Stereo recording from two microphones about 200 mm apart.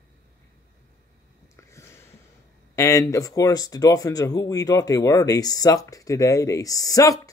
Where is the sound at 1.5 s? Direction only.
15° left (ahead or behind).